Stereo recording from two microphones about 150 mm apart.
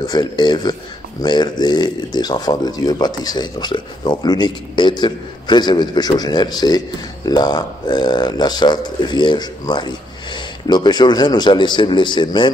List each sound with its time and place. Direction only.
0.0 s speech: 25° left (ahead or behind)